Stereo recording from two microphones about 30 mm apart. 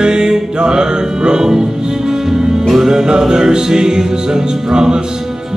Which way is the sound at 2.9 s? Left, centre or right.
Centre.